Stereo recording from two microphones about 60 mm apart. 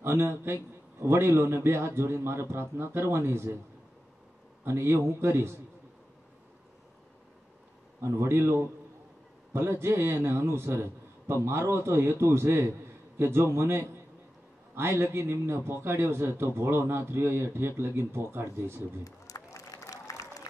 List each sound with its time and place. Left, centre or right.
0.0 s a man's voice: right
4.6 s a man's voice: right
8.0 s a man's voice: right
19.0 s applause: left